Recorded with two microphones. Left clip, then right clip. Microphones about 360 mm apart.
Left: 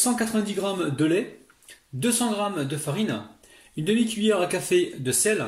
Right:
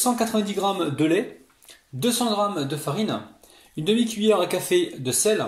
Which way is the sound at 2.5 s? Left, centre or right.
Right.